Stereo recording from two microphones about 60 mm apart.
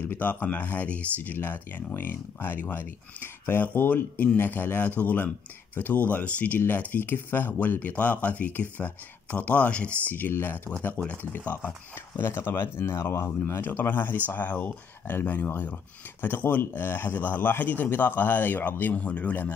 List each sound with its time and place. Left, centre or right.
0.1 s speech: left
10.1 s speech: left